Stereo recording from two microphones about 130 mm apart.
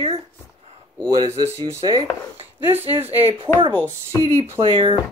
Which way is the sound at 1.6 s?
35° right (ahead or behind).